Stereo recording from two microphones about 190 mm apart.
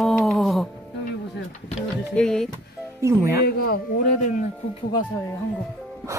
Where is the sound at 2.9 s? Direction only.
15° right (ahead or behind).